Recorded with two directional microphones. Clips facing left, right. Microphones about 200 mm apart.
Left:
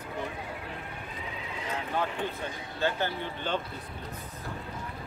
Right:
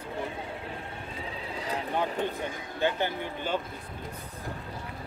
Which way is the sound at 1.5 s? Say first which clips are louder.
Right 2 dB; 35° right (ahead or behind).